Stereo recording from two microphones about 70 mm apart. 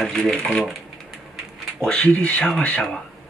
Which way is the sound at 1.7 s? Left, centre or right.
Centre.